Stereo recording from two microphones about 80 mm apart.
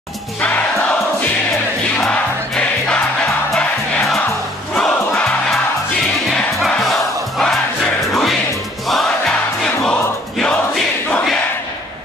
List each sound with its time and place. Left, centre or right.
0.4 s music: centre
2.0 s music: centre
4.7 s crowd: centre
6.3 s crowd: centre
8.8 s music: centre